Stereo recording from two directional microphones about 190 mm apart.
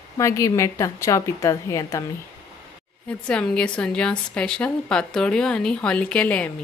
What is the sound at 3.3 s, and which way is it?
A woman's voice, 5° left (ahead or behind).